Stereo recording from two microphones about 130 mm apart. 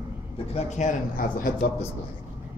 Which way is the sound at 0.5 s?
65° left (ahead or behind).